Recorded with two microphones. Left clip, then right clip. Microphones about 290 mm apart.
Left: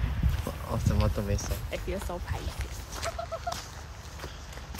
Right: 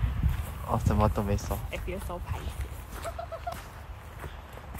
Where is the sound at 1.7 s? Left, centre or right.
Left.